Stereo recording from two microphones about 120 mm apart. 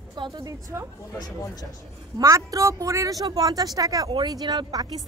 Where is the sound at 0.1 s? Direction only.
35° right (ahead or behind).